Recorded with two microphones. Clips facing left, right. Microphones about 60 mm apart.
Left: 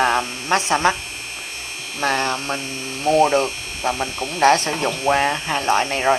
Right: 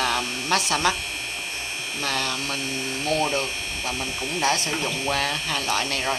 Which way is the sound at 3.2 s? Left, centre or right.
Left.